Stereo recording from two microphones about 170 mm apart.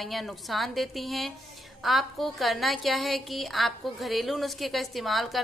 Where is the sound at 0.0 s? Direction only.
Centre (ahead or behind).